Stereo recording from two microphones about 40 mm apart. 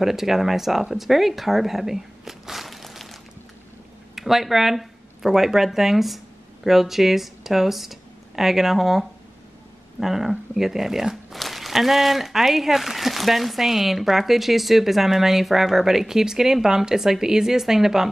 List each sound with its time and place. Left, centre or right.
0.0 s speech: centre